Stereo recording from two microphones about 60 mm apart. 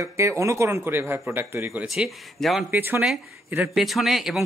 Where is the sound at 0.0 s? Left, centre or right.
Right.